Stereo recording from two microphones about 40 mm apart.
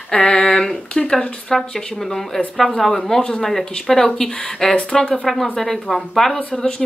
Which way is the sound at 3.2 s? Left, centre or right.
Left.